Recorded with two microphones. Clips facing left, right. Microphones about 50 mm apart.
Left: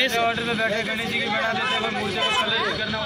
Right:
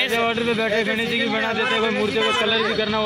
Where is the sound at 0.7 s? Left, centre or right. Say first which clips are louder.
Right 4 dB; right.